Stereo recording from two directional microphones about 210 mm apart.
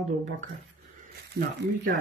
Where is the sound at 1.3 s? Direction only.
40° right (ahead or behind).